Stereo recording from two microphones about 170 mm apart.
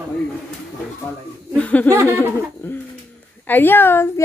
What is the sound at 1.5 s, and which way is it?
Laughter, 10° left (ahead or behind).